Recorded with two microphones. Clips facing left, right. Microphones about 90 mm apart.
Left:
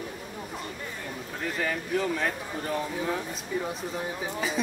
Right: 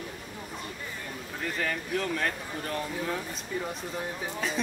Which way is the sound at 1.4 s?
5° left (ahead or behind).